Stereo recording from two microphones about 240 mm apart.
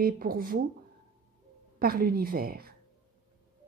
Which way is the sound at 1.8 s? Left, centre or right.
Right.